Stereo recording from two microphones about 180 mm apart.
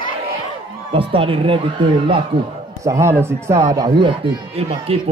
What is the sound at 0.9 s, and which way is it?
Speech, 30° right (ahead or behind).